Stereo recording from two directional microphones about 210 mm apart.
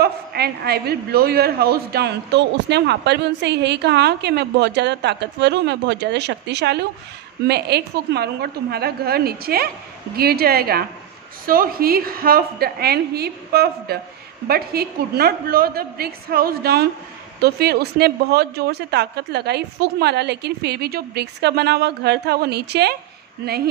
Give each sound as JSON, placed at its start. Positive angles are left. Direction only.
{"t": 0.0, "sound": "a woman's voice", "side_deg": -50}